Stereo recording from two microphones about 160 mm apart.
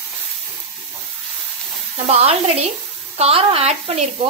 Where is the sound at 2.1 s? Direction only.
40° right (ahead or behind).